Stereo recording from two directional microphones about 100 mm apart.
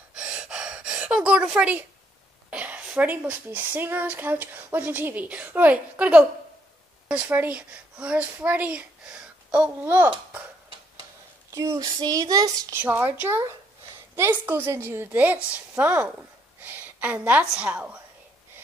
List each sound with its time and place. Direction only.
0.1 s gasp: 10° right (ahead or behind)
2.5 s a child's voice: 15° right (ahead or behind)
11.5 s a child's voice: 30° right (ahead or behind)
12.7 s a woman's voice: 20° right (ahead or behind)